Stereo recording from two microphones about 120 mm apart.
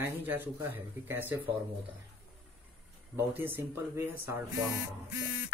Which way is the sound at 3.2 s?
15° right (ahead or behind).